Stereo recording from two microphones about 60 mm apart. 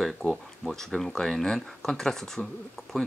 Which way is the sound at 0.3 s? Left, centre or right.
Centre.